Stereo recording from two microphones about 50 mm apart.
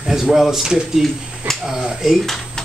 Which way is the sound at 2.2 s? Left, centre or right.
Centre.